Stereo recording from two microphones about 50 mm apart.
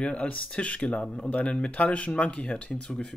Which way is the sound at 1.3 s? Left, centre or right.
Left.